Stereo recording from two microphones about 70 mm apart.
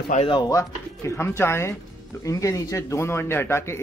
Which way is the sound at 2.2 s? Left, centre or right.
Left.